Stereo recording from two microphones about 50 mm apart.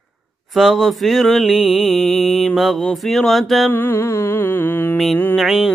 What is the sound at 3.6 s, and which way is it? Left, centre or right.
Mantra, left.